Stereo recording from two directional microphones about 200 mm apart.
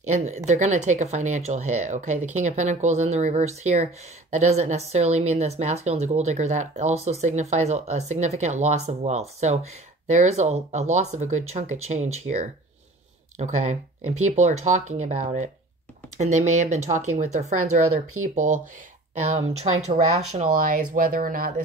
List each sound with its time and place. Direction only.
0.5 s speech: 35° right (ahead or behind)
13.4 s speech: 35° right (ahead or behind)